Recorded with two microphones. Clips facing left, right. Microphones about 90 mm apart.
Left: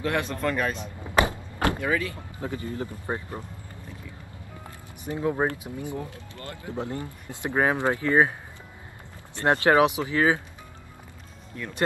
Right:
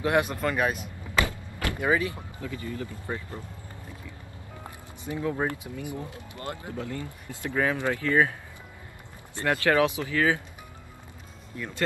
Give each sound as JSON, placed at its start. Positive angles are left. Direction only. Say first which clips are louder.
{"t": 0.0, "sound": "speech", "louder": "right 3 dB", "side_deg": -15}
{"t": 0.4, "sound": "speech", "louder": "even", "side_deg": -5}
{"t": 0.7, "sound": "vehicle", "louder": "left 4 dB", "side_deg": 20}
{"t": 1.8, "sound": "speech", "louder": "right 2 dB", "side_deg": -20}
{"t": 2.4, "sound": "speech", "louder": "left 3 dB", "side_deg": 35}
{"t": 5.1, "sound": "speech", "louder": "left 3 dB", "side_deg": 25}
{"t": 6.3, "sound": "speech", "louder": "right 5 dB", "side_deg": -20}
{"t": 6.7, "sound": "speech", "louder": "left 3 dB", "side_deg": 20}
{"t": 9.5, "sound": "speech", "louder": "left 3 dB", "side_deg": 25}
{"t": 11.6, "sound": "speech", "louder": "even", "side_deg": -5}